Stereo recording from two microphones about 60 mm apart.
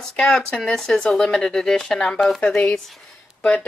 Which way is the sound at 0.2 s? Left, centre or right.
Centre.